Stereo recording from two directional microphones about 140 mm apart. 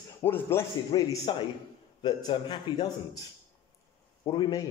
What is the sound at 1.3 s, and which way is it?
A man's voice, 35° left (ahead or behind).